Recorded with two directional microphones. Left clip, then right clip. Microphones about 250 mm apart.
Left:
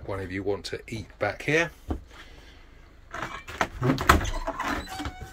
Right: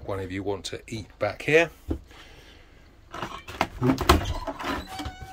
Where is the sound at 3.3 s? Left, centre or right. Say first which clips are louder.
Right 1 dB; right.